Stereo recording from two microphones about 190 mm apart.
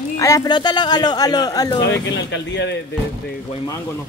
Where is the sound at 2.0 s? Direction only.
70° left (ahead or behind).